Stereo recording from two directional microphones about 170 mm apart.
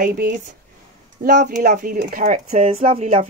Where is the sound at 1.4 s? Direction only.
50° right (ahead or behind).